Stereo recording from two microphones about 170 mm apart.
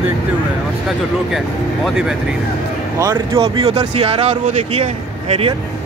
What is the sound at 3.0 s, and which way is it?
Speech, 20° right (ahead or behind).